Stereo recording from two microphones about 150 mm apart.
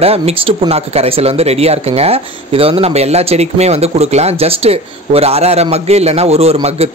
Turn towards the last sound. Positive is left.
turn(degrees=-45)  # may be behind; listen again after turning